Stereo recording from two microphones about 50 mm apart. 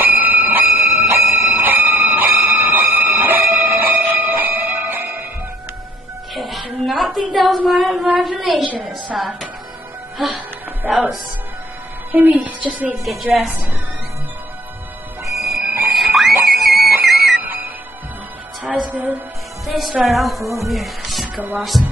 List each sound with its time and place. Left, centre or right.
0.0 s a sound: right
6.3 s a sound: centre
8.8 s speech: centre
10.8 s speech: centre
12.1 s a woman's voice: right
12.9 s speech: centre
15.2 s music: centre
15.6 s whistle: right
15.9 s a sound: centre
16.4 s music: centre
17.4 s whistle: right
19.6 s music: centre
20.0 s speech: centre
21.4 s a woman's voice: right